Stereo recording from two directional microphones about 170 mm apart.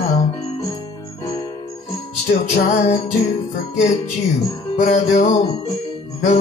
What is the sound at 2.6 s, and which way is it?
Music, 40° left (ahead or behind).